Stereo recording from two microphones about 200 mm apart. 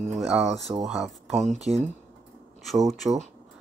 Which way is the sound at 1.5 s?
35° right (ahead or behind).